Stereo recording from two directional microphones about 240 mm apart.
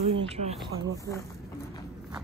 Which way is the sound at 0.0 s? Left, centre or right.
Right.